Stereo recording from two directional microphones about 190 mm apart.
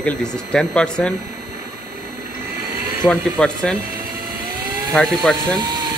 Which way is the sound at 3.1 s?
5° left (ahead or behind).